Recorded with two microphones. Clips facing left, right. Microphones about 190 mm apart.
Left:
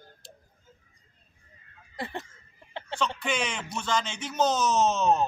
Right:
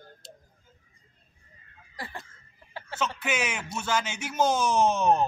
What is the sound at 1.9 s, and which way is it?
Fowl, 25° left (ahead or behind).